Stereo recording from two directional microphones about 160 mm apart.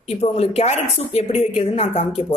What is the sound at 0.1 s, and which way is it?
A woman's voice, 40° left (ahead or behind).